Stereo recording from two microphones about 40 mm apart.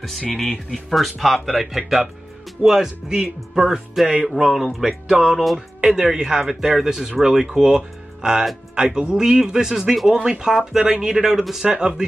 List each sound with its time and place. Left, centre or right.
0.3 s speech: centre
5.8 s speech: centre
11.6 s speech: right